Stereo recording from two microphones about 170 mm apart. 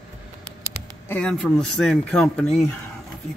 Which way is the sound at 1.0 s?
5° left (ahead or behind).